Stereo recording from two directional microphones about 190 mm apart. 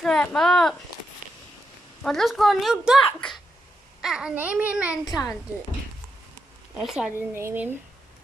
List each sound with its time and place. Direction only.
0.0 s speech: 5° left (ahead or behind)
2.0 s a child's voice: centre (ahead or behind)
5.0 s a child's voice: 20° left (ahead or behind)
6.8 s a child's voice: centre (ahead or behind)